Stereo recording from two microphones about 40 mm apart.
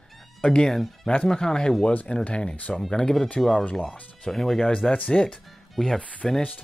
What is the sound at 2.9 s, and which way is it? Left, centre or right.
Speech, centre.